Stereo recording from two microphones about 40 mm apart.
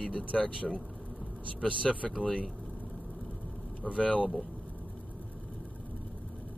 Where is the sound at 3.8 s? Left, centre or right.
Left.